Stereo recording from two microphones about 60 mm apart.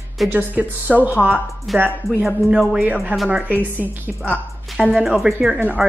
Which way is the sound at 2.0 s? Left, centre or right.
Right.